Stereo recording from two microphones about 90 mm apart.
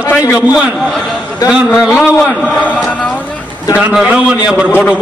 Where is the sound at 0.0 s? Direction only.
25° left (ahead or behind).